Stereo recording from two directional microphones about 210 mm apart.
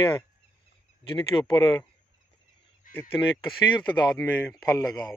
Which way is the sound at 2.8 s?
40° left (ahead or behind).